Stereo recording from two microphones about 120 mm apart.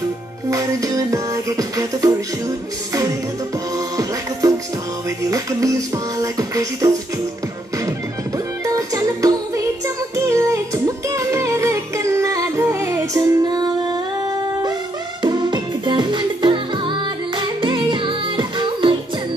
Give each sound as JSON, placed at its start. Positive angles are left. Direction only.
{"t": 0.5, "sound": "music", "side_deg": -30}
{"t": 3.7, "sound": "music", "side_deg": -30}
{"t": 8.6, "sound": "music", "side_deg": -30}
{"t": 15.2, "sound": "music", "side_deg": -40}